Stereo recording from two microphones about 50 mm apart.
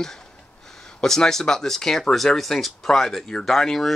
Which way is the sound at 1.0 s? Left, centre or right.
Centre.